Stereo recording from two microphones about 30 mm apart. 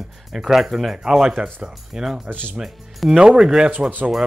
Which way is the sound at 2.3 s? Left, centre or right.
Right.